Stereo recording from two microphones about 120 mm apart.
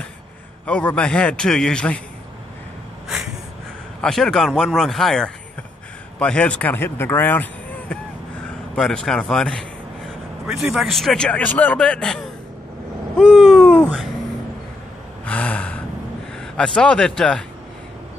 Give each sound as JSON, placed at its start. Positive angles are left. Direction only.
{"t": 0.7, "sound": "a man's voice", "side_deg": 10}
{"t": 4.0, "sound": "a man's voice", "side_deg": 5}
{"t": 8.7, "sound": "a man's voice", "side_deg": 5}
{"t": 13.2, "sound": "a sound", "side_deg": 5}
{"t": 15.2, "sound": "gasp", "side_deg": 10}
{"t": 16.5, "sound": "a man's voice", "side_deg": 10}